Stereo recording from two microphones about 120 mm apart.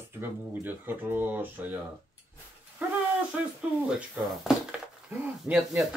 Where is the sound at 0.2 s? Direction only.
15° right (ahead or behind).